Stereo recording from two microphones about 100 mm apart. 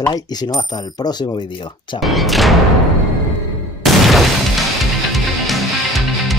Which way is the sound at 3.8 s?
Centre (ahead or behind).